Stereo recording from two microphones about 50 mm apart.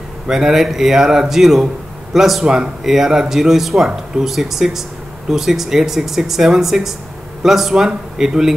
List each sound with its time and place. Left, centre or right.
0.3 s speech: centre